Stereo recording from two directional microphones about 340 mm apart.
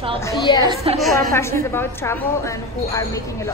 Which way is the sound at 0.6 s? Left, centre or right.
Centre.